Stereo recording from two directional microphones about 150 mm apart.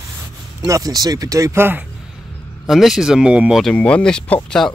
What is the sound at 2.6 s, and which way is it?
Speech, centre (ahead or behind).